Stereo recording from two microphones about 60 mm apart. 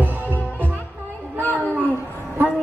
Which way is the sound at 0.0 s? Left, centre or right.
Right.